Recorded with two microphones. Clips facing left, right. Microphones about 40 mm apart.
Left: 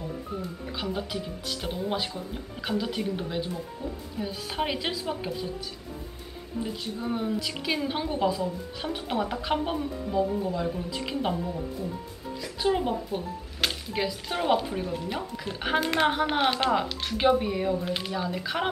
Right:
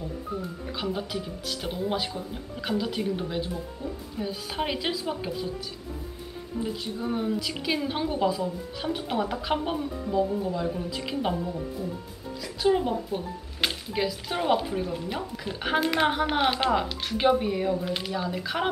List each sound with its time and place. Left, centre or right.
0.4 s speech: centre
6.6 s speech: centre